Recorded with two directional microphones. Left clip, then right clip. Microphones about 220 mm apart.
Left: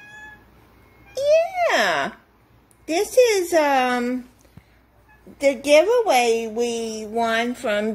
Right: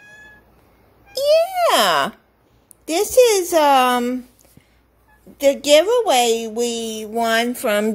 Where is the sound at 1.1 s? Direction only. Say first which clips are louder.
Right 2 dB; 25° right (ahead or behind).